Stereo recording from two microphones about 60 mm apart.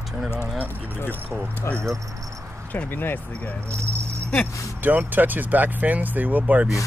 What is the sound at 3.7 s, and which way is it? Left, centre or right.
Keys jangling, right.